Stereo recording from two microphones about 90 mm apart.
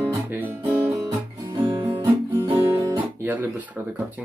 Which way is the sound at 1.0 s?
40° right (ahead or behind).